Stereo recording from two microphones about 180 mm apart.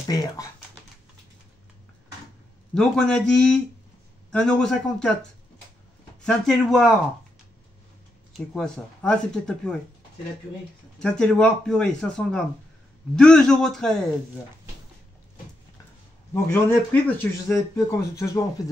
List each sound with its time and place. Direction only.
0.0 s speech: 20° left (ahead or behind)
2.7 s speech: 5° left (ahead or behind)
6.2 s speech: centre (ahead or behind)
8.4 s speech: 5° left (ahead or behind)
11.0 s speech: 5° left (ahead or behind)
16.3 s speech: 15° left (ahead or behind)